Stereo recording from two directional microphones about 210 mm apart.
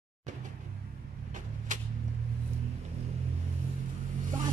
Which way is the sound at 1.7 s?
35° right (ahead or behind).